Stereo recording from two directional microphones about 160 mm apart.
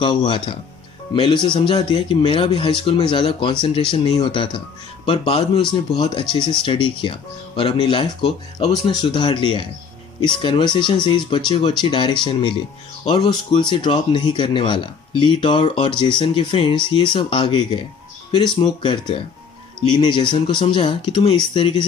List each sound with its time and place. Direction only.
0.0 s speech: 30° left (ahead or behind)